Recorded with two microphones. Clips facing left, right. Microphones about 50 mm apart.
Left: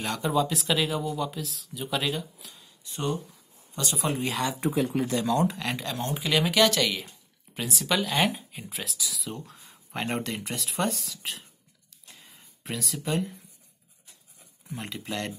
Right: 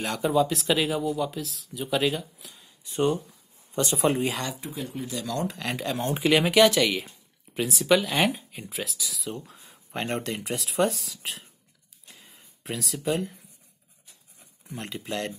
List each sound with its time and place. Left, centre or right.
0.0 s speech: centre
2.8 s speech: right
4.3 s speech: centre
4.6 s speech: left
5.3 s speech: centre
5.6 s speech: centre
6.3 s speech: centre
12.1 s a sound: centre
14.4 s speech: centre